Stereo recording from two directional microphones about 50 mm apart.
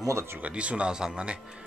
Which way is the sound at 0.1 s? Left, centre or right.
Right.